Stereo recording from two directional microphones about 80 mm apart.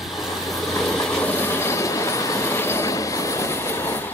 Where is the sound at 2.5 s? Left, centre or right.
Left.